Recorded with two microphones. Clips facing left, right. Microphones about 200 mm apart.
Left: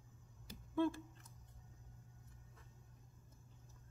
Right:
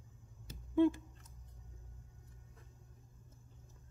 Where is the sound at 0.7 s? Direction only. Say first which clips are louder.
Right 7 dB; 15° right (ahead or behind).